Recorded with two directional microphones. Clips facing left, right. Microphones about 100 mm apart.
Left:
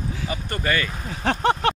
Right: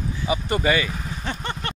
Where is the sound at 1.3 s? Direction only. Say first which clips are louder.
Left 11 dB; 90° left.